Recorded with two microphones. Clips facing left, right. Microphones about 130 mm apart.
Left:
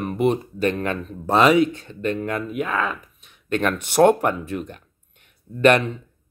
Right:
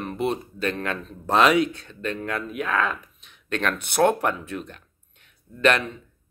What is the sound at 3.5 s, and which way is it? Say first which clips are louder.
Speech: left 4 dB; 10° left (ahead or behind).